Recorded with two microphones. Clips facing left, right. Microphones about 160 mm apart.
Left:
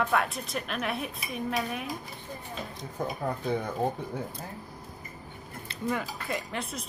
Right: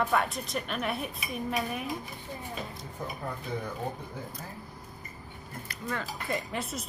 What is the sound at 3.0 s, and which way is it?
Speech, 80° left.